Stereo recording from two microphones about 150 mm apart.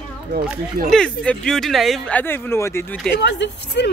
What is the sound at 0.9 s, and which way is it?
Speech, 5° left (ahead or behind).